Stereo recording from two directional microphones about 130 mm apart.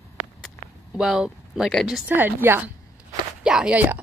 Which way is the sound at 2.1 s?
15° right (ahead or behind).